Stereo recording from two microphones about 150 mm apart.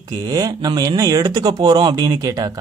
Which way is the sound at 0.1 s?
25° right (ahead or behind).